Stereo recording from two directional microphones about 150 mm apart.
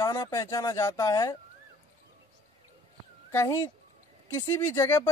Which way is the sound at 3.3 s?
15° left (ahead or behind).